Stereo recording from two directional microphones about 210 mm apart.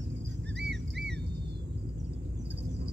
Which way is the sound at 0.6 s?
55° right (ahead or behind).